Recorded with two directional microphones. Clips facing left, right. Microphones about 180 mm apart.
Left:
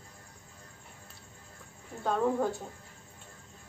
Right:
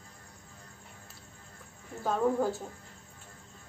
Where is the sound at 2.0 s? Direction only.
Centre (ahead or behind).